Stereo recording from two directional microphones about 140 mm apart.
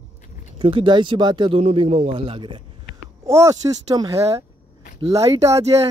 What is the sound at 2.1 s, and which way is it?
Speech, 35° right (ahead or behind).